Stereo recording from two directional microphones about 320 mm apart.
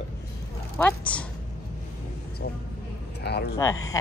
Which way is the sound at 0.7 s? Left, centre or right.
Centre.